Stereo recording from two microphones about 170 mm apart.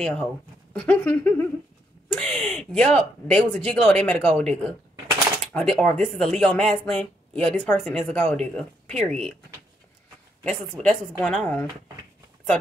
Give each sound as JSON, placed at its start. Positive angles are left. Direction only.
{"t": 0.0, "sound": "speech", "side_deg": 5}
{"t": 10.4, "sound": "speech", "side_deg": 5}